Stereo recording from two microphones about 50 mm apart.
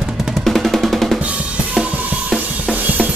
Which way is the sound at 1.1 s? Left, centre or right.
Right.